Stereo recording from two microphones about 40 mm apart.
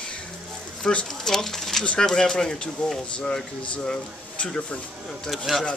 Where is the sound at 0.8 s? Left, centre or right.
Centre.